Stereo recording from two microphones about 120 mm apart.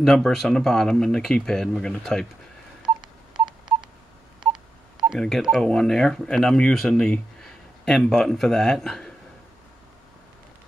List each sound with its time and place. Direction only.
0.0 s speech: 5° left (ahead or behind)
2.8 s telephone dialing: 40° right (ahead or behind)
5.0 s speech: centre (ahead or behind)